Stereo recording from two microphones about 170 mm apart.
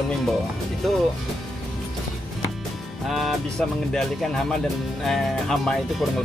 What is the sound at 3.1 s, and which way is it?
Speech, centre (ahead or behind).